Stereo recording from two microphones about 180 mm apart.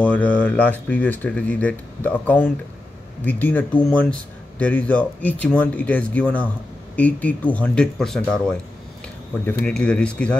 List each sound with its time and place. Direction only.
0.0 s speech: 10° left (ahead or behind)